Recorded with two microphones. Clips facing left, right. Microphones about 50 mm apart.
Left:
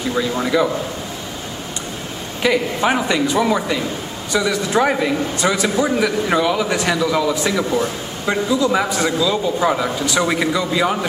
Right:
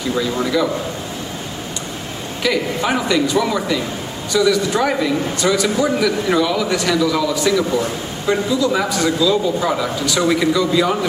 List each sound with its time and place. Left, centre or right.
0.1 s a man's voice: centre
2.4 s a man's voice: left